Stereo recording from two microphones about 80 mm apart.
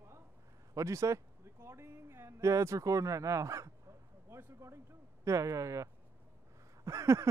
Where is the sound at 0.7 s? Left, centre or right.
Right.